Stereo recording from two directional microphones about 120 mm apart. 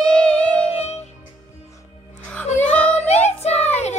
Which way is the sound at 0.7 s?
60° left (ahead or behind).